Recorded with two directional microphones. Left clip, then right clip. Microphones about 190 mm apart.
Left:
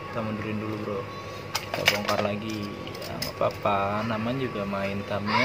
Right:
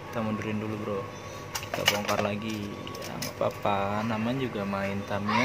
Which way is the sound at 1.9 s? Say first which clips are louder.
Left 2 dB; 10° right (ahead or behind).